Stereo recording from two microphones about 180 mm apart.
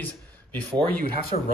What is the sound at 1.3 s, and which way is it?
Speech, 40° left (ahead or behind).